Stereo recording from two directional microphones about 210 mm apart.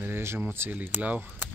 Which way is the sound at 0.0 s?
10° right (ahead or behind).